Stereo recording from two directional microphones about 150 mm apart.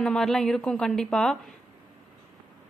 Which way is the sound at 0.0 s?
5° left (ahead or behind).